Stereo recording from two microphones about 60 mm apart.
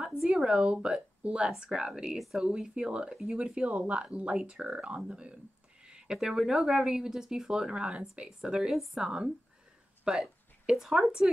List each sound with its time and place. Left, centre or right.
0.1 s a woman's voice: centre
5.9 s a sound: centre
6.1 s speech: centre